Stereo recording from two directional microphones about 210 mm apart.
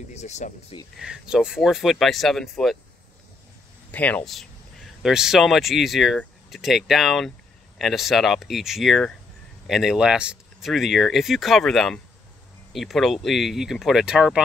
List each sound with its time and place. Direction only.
0.1 s speech: 35° left (ahead or behind)
0.9 s speech: 5° right (ahead or behind)
3.9 s speech: 5° left (ahead or behind)